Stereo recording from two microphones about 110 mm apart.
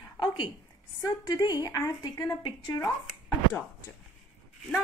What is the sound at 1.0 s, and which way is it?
A woman's voice, 35° left (ahead or behind).